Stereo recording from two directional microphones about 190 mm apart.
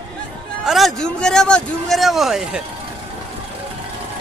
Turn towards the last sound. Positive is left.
turn(degrees=0)  # may be behind; listen again after turning